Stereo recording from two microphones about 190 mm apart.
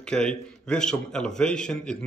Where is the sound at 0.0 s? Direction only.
5° left (ahead or behind).